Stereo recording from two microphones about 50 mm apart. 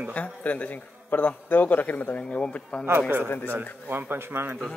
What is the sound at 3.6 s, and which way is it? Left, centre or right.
Speech, right.